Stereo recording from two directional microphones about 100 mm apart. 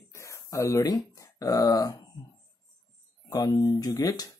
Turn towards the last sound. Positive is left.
turn(degrees=40)  # may be behind; listen again after turning